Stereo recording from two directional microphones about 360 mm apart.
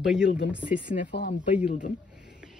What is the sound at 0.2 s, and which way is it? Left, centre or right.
Speech, left.